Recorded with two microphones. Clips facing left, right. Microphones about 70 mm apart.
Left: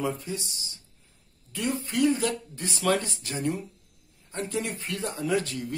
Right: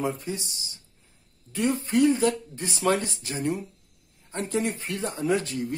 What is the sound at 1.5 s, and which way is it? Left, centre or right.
Speech, right.